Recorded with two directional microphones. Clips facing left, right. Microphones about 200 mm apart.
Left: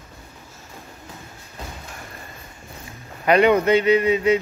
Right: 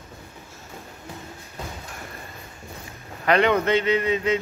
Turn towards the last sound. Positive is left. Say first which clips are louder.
# left 5 dB
turn(degrees=10)  # may be behind; listen again after turning